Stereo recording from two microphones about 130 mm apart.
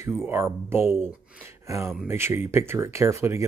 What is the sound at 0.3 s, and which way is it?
Speech, 20° right (ahead or behind).